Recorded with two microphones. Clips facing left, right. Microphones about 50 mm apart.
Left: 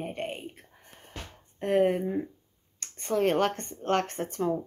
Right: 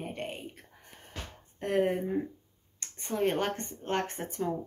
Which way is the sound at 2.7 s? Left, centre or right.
Left.